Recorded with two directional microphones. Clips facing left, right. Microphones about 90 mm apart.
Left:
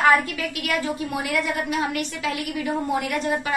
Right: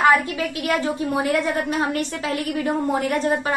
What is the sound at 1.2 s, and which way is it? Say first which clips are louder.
A woman's voice: right 4 dB; 35° right (ahead or behind).